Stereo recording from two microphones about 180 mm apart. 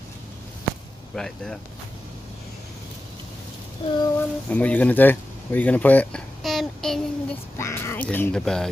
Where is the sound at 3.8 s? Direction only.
30° left (ahead or behind).